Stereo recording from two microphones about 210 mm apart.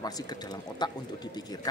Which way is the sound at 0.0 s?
20° left (ahead or behind).